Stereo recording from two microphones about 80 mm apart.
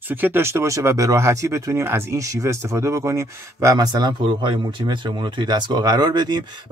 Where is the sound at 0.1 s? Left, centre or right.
Right.